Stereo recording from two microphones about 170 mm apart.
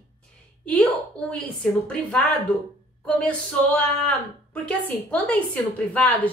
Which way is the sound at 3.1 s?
5° left (ahead or behind).